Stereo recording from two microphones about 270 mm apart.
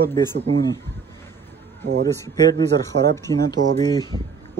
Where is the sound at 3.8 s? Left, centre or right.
Centre.